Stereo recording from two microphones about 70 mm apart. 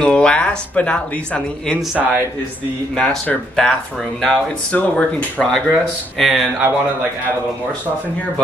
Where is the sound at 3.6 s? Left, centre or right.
Centre.